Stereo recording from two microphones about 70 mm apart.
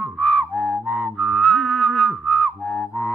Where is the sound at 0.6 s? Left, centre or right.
Centre.